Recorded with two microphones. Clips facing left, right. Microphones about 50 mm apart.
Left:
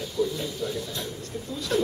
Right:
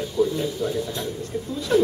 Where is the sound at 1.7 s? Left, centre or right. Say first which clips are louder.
Right 6 dB; centre.